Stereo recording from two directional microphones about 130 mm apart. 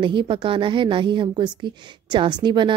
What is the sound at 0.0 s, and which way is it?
A woman's voice, 40° right (ahead or behind).